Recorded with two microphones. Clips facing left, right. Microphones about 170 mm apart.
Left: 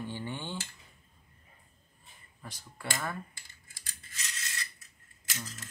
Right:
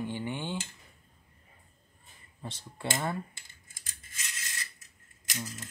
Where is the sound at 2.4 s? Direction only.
25° right (ahead or behind).